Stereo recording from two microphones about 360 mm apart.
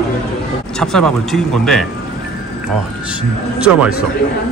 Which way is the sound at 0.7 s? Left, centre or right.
Centre.